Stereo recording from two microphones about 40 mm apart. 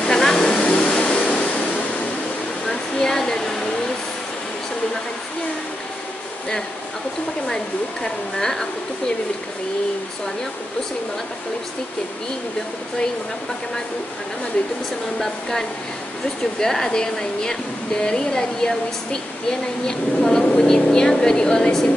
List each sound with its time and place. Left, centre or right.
0.0 s vehicle: centre
0.6 s a sound: left
1.3 s waves: left
3.1 s a sound: centre
7.4 s speech: centre
15.1 s speech: centre
19.9 s speech: centre